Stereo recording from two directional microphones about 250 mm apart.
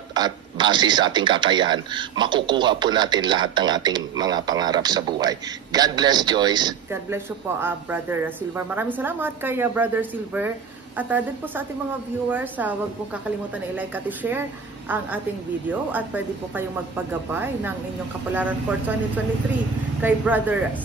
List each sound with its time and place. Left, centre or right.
0.1 s speech: centre
20.0 s speech: centre